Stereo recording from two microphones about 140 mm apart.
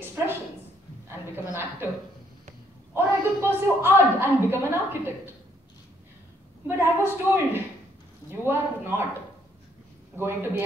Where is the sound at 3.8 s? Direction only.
15° right (ahead or behind).